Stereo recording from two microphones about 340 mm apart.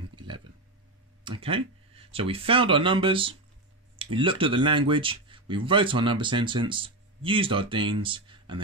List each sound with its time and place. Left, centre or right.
1.2 s speech: centre